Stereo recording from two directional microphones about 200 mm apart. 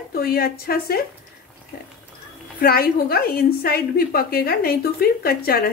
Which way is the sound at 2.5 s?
50° left (ahead or behind).